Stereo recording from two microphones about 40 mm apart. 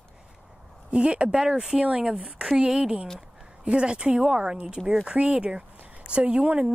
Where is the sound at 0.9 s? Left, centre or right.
Right.